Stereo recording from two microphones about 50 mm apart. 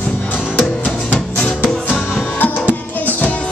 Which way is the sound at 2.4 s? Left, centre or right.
Left.